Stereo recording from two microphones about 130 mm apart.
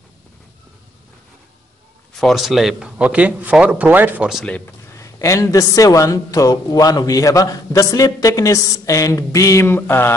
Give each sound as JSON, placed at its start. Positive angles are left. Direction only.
{"t": 2.1, "sound": "speech", "side_deg": 0}
{"t": 4.5, "sound": "speech", "side_deg": 10}
{"t": 4.9, "sound": "a man's voice", "side_deg": 25}